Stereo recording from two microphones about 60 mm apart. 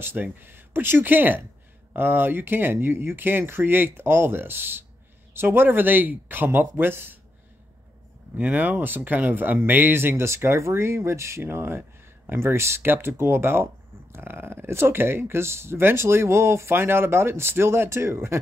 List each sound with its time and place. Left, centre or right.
0.0 s speech: right
8.4 s speech: right